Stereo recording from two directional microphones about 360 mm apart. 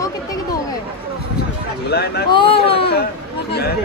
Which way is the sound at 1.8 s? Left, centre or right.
Left.